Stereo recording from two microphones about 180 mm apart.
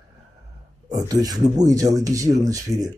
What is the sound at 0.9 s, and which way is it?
Speech, 20° right (ahead or behind).